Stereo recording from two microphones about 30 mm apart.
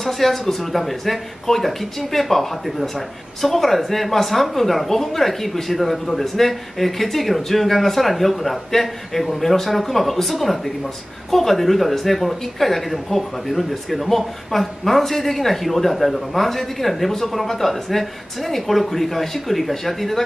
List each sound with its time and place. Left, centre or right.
0.0 s speech: centre